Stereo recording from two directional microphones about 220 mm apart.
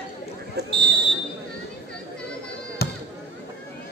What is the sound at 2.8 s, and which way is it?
Chop, 45° left (ahead or behind).